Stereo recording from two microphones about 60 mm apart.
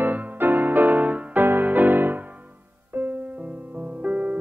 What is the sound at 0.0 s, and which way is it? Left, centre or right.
Music, right.